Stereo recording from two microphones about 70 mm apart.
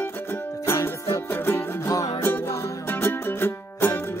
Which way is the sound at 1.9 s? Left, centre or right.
Left.